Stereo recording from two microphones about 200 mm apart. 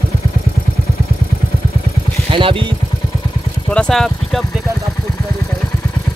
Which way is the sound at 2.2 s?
25° right (ahead or behind).